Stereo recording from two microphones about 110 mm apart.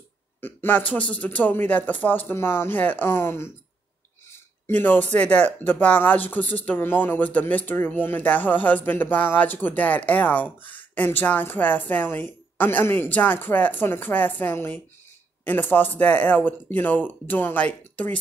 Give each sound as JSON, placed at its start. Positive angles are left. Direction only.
{"t": 0.4, "sound": "speech", "side_deg": 20}